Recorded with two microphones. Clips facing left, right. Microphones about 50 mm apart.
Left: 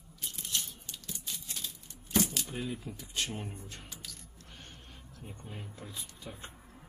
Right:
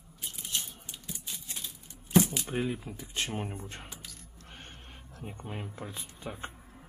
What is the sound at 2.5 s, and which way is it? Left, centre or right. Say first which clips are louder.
Speech: right 6 dB; right.